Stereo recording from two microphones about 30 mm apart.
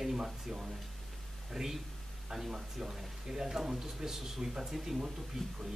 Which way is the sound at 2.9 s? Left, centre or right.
Right.